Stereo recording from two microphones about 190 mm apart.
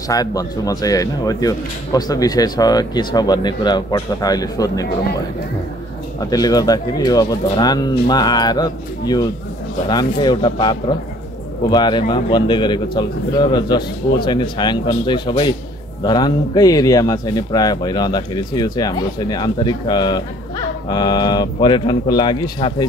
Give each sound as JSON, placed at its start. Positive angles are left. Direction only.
{"t": 0.1, "sound": "a man's voice", "side_deg": 20}
{"t": 6.3, "sound": "a man's voice", "side_deg": 20}